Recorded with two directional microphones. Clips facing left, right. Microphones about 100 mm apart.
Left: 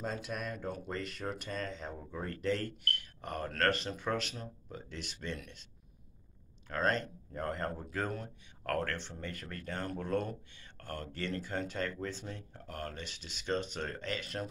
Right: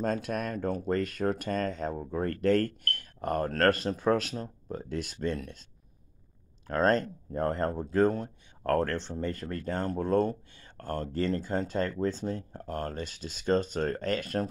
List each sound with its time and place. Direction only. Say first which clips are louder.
0.0 s speech: right 8 dB; 50° right (ahead or behind)
6.7 s speech: right 7 dB; 40° right (ahead or behind)